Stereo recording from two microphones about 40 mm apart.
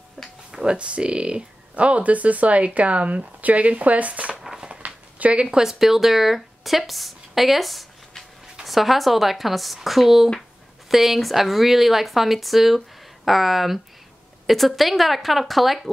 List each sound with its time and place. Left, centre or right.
0.5 s speech: right
4.4 s a sound: centre
5.3 s speech: right
5.6 s speech: centre